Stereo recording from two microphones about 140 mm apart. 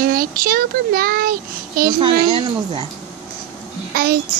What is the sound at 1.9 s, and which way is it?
Speech, 35° right (ahead or behind).